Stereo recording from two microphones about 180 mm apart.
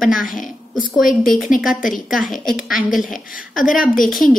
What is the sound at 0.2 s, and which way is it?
Speech, 50° left (ahead or behind).